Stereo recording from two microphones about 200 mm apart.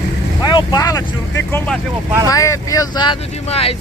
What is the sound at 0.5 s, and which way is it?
Speech, 20° left (ahead or behind).